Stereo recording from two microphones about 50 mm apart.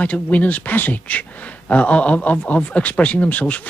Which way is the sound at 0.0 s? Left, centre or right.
Left.